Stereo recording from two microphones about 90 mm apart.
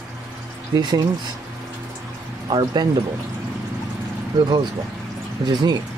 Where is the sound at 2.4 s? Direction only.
55° right (ahead or behind).